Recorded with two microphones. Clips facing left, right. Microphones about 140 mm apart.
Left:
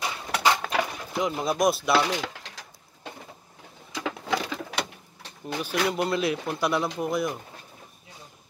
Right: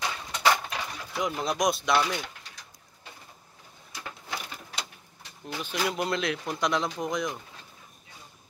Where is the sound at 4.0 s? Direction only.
90° left.